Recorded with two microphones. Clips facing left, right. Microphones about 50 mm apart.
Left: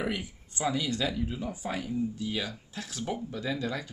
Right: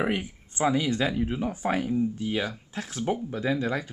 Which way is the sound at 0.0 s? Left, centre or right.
Right.